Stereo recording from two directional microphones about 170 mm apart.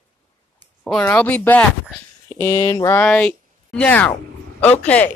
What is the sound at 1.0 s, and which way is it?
Speech, 10° left (ahead or behind).